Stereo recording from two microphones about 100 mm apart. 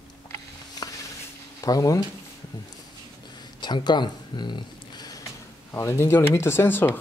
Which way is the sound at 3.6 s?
45° left (ahead or behind).